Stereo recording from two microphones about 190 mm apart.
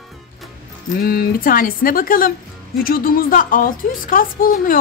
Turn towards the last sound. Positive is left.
turn(degrees=50)  # may be behind; listen again after turning